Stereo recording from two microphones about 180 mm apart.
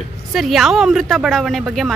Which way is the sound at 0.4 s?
Centre (ahead or behind).